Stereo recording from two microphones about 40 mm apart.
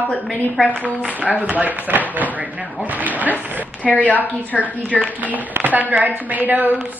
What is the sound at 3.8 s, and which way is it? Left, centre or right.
A woman's voice, left.